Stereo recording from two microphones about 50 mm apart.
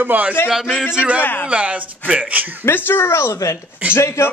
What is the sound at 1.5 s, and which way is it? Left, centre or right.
Speech, right.